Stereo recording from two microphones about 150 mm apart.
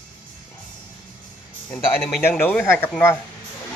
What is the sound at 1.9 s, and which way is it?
A man's voice, 15° left (ahead or behind).